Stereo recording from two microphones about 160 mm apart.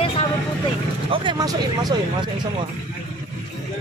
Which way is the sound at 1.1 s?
25° right (ahead or behind).